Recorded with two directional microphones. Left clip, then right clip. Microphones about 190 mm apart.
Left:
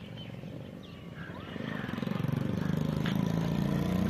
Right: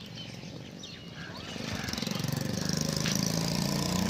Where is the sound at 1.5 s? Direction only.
10° left (ahead or behind).